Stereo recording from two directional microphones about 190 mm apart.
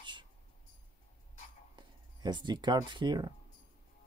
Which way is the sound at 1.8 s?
25° right (ahead or behind).